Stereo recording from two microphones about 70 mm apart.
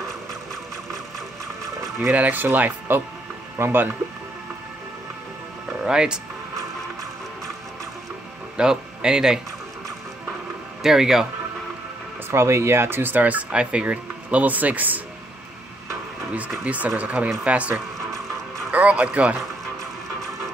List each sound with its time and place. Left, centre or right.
2.0 s speech: right
5.7 s music: centre
8.5 s speech: centre
10.8 s speech: centre
12.3 s speech: right
16.3 s speech: right